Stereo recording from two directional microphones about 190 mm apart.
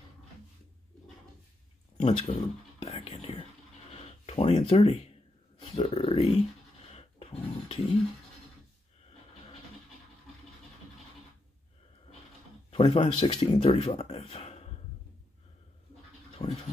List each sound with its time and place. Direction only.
2.0 s speech: 35° left (ahead or behind)
2.8 s whispering: 30° left (ahead or behind)
3.9 s a sound: 35° left (ahead or behind)
5.7 s speech: 30° left (ahead or behind)
6.9 s dog: 35° left (ahead or behind)
12.7 s speech: 30° left (ahead or behind)
16.3 s vehicle: 35° left (ahead or behind)